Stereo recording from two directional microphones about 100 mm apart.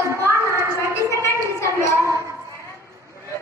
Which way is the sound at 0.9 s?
30° left (ahead or behind).